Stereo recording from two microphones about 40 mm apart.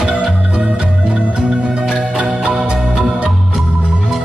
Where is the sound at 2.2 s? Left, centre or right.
Right.